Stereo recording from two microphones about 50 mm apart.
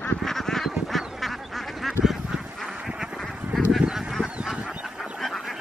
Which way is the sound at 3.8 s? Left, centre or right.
Centre.